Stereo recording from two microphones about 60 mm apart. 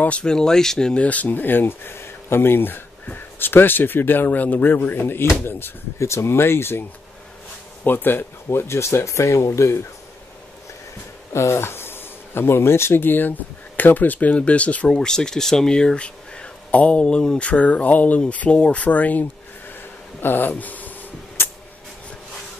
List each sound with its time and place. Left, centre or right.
0.2 s speech: centre
1.0 s speech: left
7.8 s speech: left
11.3 s speech: left
14.9 s speech: centre; by 20.9 s left